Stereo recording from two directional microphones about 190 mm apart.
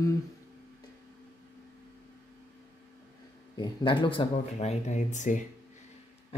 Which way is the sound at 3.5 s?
25° left (ahead or behind).